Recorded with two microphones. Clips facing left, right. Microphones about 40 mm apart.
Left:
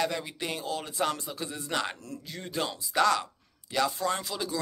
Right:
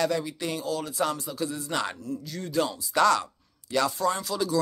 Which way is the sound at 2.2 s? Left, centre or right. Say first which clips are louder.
Right 4 dB; left.